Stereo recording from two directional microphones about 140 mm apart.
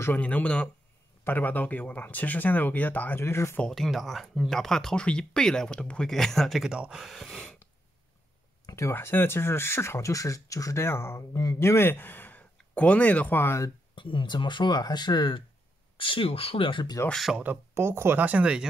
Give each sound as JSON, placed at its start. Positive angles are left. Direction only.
{"t": 0.0, "sound": "speech", "side_deg": 10}
{"t": 3.6, "sound": "speech", "side_deg": 0}
{"t": 8.6, "sound": "speech", "side_deg": 20}
{"t": 13.9, "sound": "speech", "side_deg": 35}
{"t": 17.1, "sound": "speech", "side_deg": 0}
{"t": 17.4, "sound": "speech", "side_deg": -15}